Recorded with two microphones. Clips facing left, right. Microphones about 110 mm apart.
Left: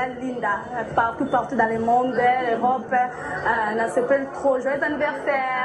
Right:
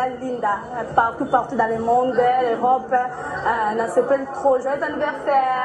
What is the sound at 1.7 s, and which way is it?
A woman's voice, 15° right (ahead or behind).